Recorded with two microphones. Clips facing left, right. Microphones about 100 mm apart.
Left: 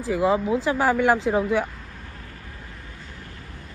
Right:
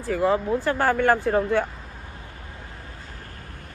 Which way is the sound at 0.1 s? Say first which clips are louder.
Left 1 dB; 10° left (ahead or behind).